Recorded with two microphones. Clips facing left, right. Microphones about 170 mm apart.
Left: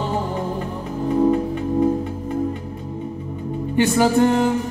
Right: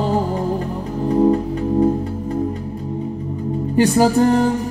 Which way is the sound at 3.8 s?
35° right (ahead or behind).